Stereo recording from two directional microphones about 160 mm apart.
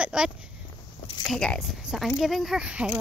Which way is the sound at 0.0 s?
5° right (ahead or behind).